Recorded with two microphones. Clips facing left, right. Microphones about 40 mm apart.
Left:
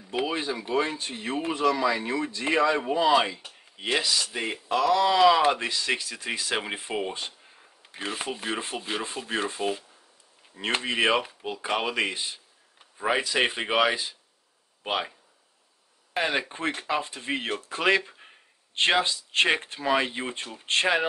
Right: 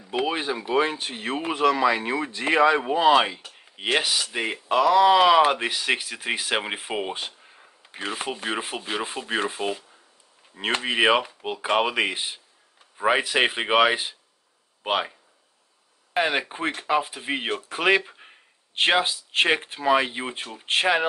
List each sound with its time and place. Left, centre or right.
0.0 s a sound: centre
0.3 s speech: right
4.0 s speech: right
4.3 s speech: right
7.4 s sanding: centre
9.0 s speech: centre
10.8 s speech: centre
14.8 s speech: centre